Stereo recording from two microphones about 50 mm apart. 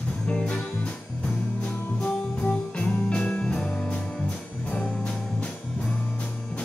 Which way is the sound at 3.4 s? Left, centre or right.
Centre.